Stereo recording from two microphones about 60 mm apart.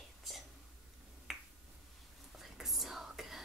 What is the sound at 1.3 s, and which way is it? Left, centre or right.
Finger snapping, centre.